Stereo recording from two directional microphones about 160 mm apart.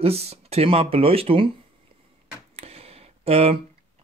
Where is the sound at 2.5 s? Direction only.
40° right (ahead or behind).